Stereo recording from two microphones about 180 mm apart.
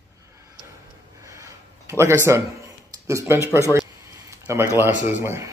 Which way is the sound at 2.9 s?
15° right (ahead or behind).